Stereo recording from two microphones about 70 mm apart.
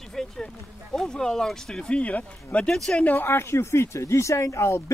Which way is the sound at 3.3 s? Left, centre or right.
Left.